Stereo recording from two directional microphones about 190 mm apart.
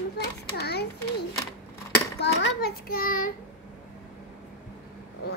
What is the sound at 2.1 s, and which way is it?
A child's voice, 60° left (ahead or behind).